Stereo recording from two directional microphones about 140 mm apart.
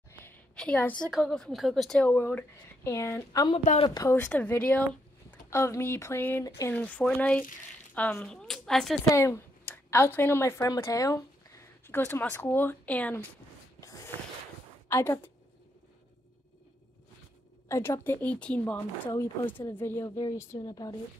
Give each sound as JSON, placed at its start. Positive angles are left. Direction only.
{"t": 0.2, "sound": "a sound", "side_deg": 10}
{"t": 1.2, "sound": "a woman's voice", "side_deg": 5}
{"t": 3.8, "sound": "speech", "side_deg": 30}
{"t": 4.1, "sound": "a woman's voice", "side_deg": 15}
{"t": 9.0, "sound": "speech", "side_deg": 20}
{"t": 13.7, "sound": "snort", "side_deg": 20}
{"t": 14.9, "sound": "a woman's voice", "side_deg": 15}
{"t": 17.6, "sound": "a woman's voice", "side_deg": 20}
{"t": 20.2, "sound": "speech", "side_deg": 25}